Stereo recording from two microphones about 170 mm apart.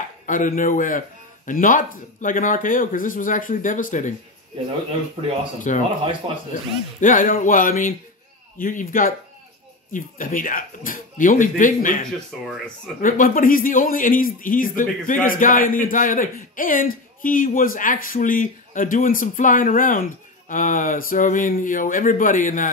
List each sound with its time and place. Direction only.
0.3 s a man's voice: 50° left (ahead or behind)
5.6 s a man's voice: 45° left (ahead or behind)
7.0 s a man's voice: 50° left (ahead or behind)
13.0 s a man's voice: 55° left (ahead or behind)